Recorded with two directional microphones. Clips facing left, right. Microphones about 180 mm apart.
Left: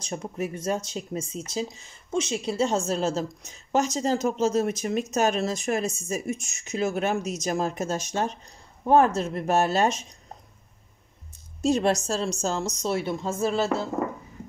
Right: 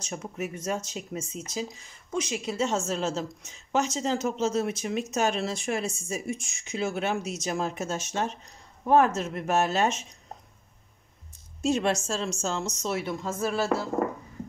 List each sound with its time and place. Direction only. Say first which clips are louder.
0.0 s speech: left 3 dB; 30° left (ahead or behind)
11.6 s speech: left 3 dB; 35° left (ahead or behind)